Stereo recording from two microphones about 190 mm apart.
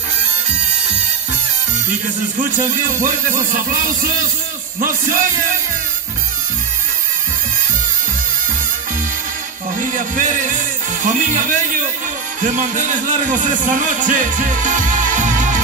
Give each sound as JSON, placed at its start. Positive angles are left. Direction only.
{"t": 2.3, "sound": "music", "side_deg": -45}
{"t": 9.8, "sound": "speech", "side_deg": -45}